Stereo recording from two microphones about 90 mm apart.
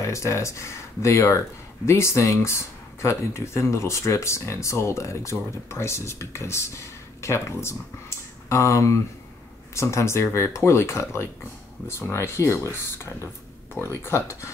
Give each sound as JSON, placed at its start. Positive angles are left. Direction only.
{"t": 0.0, "sound": "speech", "side_deg": 35}